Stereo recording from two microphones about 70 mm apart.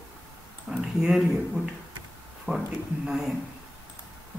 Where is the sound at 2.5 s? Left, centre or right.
Right.